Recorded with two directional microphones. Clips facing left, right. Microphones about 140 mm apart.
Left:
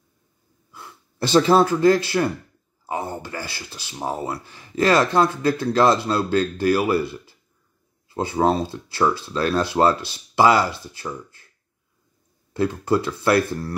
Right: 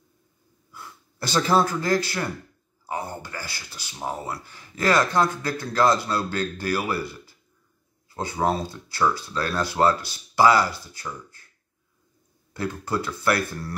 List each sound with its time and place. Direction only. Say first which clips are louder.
1.3 s speech: left 5 dB; 25° left (ahead or behind)
12.5 s speech: left 7 dB; 25° left (ahead or behind)